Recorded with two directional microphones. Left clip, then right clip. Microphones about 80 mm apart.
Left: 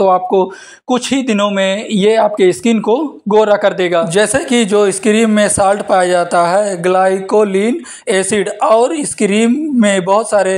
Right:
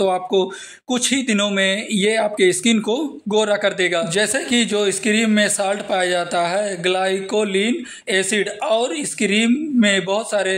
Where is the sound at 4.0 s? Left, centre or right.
Left.